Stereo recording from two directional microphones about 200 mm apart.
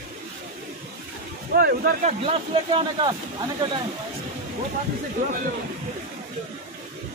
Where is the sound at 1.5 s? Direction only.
50° right (ahead or behind); by 3.2 s 25° right (ahead or behind).